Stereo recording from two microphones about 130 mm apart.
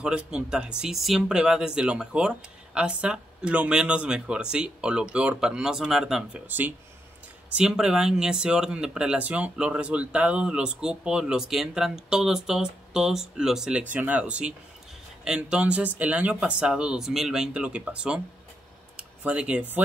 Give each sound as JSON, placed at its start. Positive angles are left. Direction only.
{"t": 0.0, "sound": "speech", "side_deg": -5}
{"t": 6.4, "sound": "speech", "side_deg": -15}
{"t": 18.9, "sound": "a sound", "side_deg": -10}